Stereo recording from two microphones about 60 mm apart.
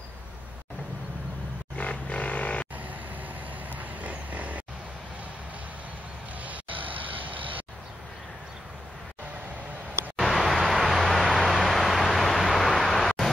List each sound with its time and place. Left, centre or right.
1.8 s vehicle: left
2.8 s vehicle: right
6.4 s vehicle: right
10.1 s vehicle: centre